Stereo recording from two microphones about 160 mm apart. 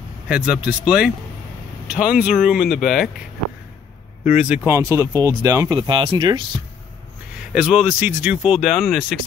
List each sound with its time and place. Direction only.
0.3 s speech: 5° right (ahead or behind)
4.4 s speech: 10° right (ahead or behind); by 6.6 s 30° right (ahead or behind)
7.5 s speech: 5° right (ahead or behind)